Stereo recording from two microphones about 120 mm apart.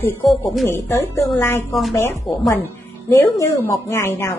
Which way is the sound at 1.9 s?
20° left (ahead or behind).